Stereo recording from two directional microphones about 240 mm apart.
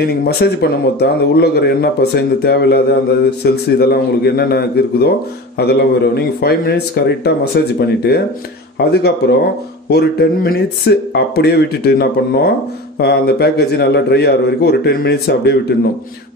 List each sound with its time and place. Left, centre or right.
0.0 s a man's voice: left